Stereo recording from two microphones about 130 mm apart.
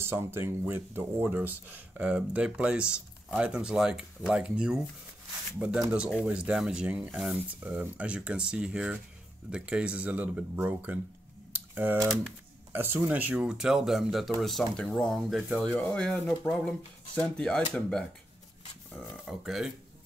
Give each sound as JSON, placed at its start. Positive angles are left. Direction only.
{"t": 0.0, "sound": "speech", "side_deg": -20}